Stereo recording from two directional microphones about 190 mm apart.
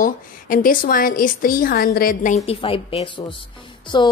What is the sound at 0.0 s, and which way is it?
A woman's voice, 45° left (ahead or behind).